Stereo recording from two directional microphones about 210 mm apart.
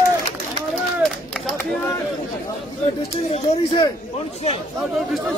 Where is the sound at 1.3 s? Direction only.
5° left (ahead or behind).